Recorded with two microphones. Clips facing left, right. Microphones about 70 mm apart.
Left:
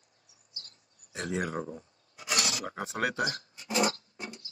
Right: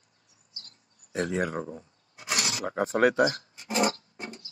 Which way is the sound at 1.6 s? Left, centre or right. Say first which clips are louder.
Right 2 dB; right.